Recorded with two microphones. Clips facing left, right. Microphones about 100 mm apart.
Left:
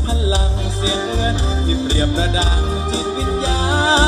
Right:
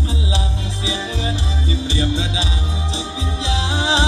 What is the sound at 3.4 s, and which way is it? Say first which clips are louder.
Music: left 3 dB; 40° left (ahead or behind).